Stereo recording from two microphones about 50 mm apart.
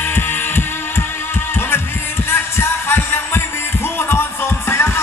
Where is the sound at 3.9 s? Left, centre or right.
Left.